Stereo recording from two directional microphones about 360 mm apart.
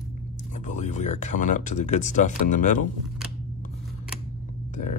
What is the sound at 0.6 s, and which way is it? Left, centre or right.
Speech, centre.